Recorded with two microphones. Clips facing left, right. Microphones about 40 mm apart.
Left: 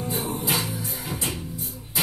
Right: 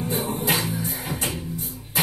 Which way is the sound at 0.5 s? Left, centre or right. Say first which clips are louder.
Right 3 dB; right.